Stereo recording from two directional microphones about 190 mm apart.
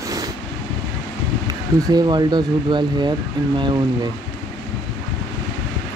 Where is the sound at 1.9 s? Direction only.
20° right (ahead or behind).